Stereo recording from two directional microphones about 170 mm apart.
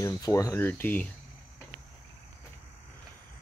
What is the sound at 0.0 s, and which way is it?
Speech, 20° left (ahead or behind).